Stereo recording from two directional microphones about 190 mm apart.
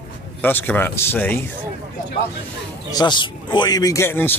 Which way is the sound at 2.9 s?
20° left (ahead or behind).